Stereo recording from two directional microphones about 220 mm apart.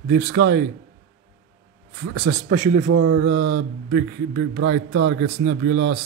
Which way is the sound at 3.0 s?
60° right (ahead or behind).